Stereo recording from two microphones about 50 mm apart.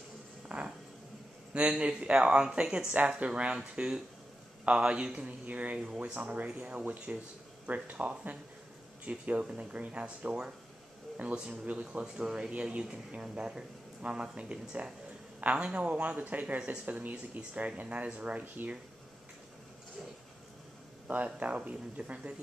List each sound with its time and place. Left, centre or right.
0.5 s a sound: centre
1.5 s speech: right
21.1 s speech: right